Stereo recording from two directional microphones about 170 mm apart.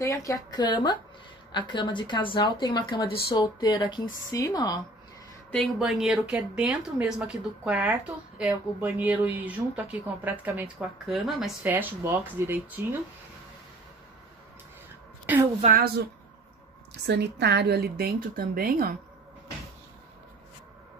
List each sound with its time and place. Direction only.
0.0 s speech: 20° left (ahead or behind)
5.5 s speech: centre (ahead or behind)
17.0 s a woman's voice: 85° right; by 18.9 s 60° right (ahead or behind)